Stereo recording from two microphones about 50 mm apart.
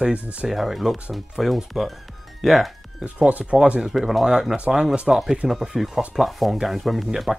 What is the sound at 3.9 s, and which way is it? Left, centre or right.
Speech, centre.